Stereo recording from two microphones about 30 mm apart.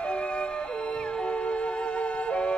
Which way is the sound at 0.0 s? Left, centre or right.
Left.